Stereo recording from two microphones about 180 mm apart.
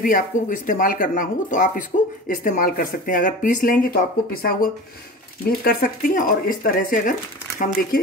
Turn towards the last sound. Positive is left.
turn(degrees=50)  # may be behind; listen again after turning